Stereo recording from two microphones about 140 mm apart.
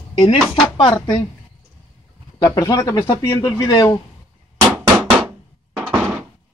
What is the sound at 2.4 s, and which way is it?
Speech, 25° left (ahead or behind).